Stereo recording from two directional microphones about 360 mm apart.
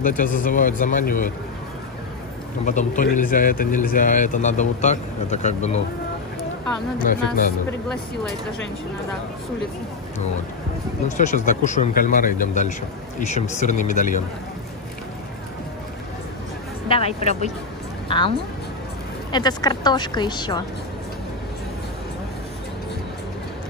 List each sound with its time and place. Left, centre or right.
0.0 s speech: left
2.6 s speech: left
7.0 s speech: left
11.1 s speech: left
16.9 s a woman's voice: centre
19.3 s a woman's voice: centre